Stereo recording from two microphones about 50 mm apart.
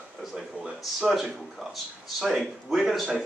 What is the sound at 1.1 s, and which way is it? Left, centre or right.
Speech, centre.